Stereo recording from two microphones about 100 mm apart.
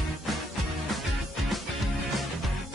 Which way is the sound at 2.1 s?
Centre (ahead or behind).